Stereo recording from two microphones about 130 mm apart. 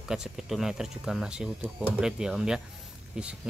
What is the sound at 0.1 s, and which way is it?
Speech, 5° right (ahead or behind).